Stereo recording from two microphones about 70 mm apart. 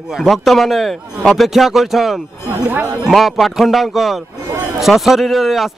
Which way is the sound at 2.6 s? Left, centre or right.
Right.